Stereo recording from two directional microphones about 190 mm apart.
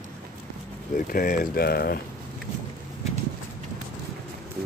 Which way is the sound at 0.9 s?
45° left (ahead or behind).